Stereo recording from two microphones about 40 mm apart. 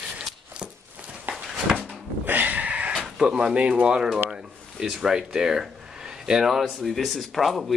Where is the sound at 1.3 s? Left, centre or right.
Right.